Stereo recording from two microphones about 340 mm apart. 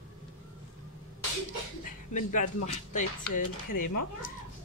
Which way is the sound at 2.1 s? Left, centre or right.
Left.